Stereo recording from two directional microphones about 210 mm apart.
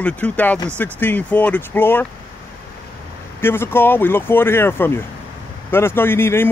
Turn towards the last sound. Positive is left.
turn(degrees=10)  # may be behind; listen again after turning